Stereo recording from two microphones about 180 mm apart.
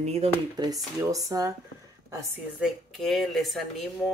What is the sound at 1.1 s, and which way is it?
Speech, 20° right (ahead or behind).